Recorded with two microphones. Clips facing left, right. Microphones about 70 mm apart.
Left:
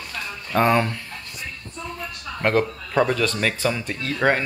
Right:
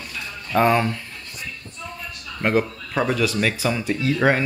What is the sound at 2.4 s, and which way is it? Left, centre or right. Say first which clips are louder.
Speech: even; centre.